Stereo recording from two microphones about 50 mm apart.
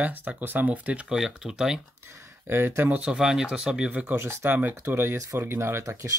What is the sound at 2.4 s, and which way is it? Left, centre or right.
Speech, right.